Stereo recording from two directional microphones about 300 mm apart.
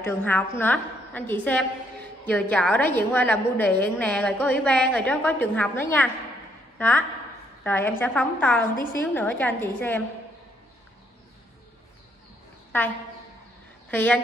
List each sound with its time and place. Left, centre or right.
0.0 s a woman's voice: centre
13.8 s speech: centre